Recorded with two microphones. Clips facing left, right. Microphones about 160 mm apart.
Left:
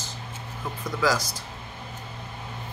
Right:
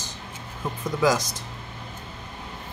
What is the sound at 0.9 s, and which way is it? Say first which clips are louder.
Speech: right 3 dB; 20° right (ahead or behind).